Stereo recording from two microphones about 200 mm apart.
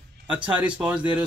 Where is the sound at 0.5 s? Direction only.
5° right (ahead or behind).